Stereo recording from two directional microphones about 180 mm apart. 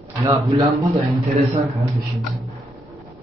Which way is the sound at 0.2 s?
20° right (ahead or behind).